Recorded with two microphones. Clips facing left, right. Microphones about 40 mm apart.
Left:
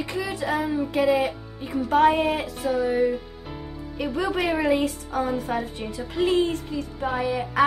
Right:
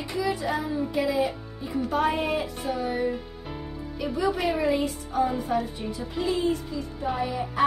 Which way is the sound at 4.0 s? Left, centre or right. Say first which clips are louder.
Left 1 dB; left.